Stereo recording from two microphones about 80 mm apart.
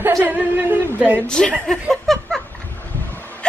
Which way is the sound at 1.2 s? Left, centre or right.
Centre.